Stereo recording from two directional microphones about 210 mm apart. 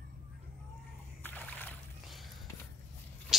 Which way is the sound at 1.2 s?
10° left (ahead or behind).